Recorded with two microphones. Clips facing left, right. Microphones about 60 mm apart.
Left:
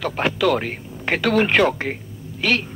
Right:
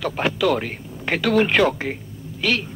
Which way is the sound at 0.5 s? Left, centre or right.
Centre.